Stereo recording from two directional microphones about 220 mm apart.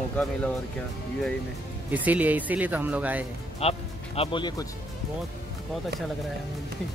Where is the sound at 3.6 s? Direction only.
25° left (ahead or behind).